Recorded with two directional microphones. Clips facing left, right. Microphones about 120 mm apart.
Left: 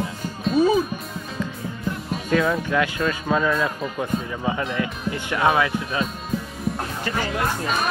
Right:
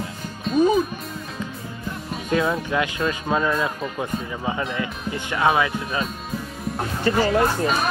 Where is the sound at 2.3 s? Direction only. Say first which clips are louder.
Left 1 dB; 25° right (ahead or behind).